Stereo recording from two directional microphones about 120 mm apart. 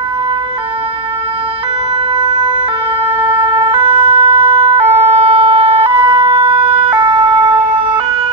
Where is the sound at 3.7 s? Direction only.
45° right (ahead or behind).